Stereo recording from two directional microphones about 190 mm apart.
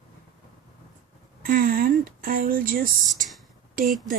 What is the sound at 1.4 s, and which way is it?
Speech, 50° right (ahead or behind).